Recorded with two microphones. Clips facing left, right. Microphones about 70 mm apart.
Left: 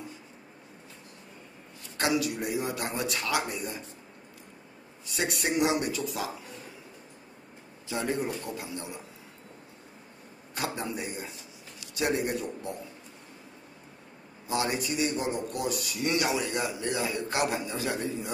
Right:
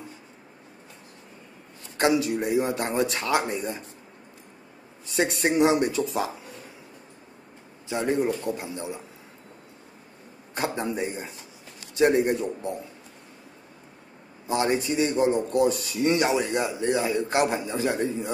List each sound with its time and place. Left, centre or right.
2.0 s a man's voice: right
5.0 s a man's voice: right
7.9 s a man's voice: right
10.5 s a man's voice: right
14.5 s a man's voice: right